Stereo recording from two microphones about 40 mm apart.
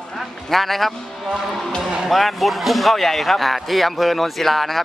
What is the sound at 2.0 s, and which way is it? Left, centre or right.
Speech, centre.